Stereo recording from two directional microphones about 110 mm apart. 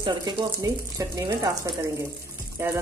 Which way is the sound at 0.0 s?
45° right (ahead or behind).